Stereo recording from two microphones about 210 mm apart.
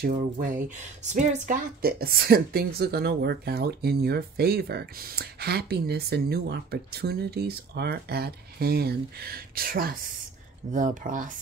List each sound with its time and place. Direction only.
0.0 s speech: 40° right (ahead or behind)